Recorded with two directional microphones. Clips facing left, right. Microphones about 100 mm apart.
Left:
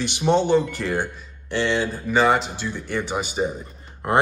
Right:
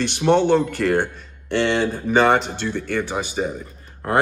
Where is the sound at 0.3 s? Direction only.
60° right (ahead or behind).